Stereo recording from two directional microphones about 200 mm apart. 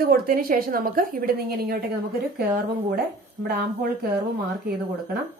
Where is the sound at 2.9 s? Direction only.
50° right (ahead or behind).